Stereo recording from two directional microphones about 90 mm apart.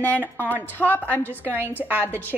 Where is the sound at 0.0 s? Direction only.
20° left (ahead or behind).